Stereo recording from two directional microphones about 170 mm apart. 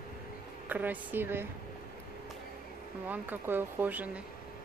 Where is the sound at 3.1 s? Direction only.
10° right (ahead or behind).